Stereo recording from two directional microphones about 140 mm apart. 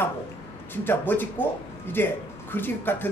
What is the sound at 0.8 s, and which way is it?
Speech, 15° left (ahead or behind).